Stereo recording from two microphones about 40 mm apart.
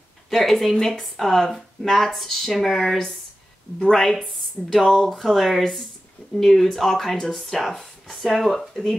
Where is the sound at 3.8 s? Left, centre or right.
Centre.